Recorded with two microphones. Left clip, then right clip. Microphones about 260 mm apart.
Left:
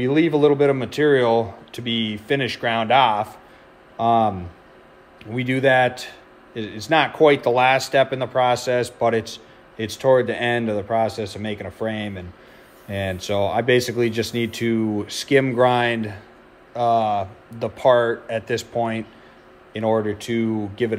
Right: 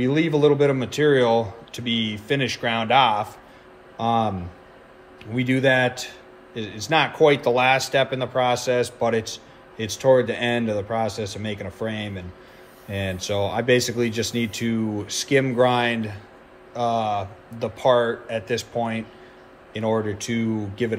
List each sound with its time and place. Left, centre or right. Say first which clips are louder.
0.0 s a man's voice: left 2 dB; left